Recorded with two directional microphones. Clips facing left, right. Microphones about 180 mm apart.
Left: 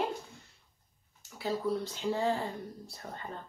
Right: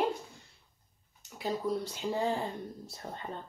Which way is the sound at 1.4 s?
10° right (ahead or behind).